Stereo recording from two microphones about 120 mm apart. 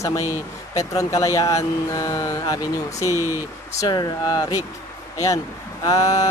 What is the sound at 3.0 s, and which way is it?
Speech, 25° right (ahead or behind).